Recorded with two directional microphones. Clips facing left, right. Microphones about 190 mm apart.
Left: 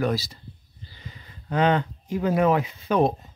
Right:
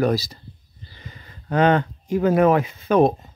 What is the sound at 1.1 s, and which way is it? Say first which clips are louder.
Speech: right 4 dB; 50° right (ahead or behind).